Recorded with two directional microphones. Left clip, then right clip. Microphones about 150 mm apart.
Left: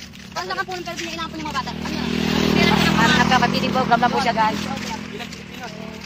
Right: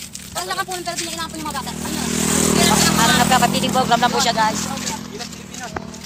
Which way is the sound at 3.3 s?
80° right.